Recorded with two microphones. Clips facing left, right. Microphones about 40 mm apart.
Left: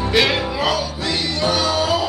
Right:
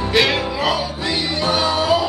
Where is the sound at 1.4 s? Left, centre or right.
Centre.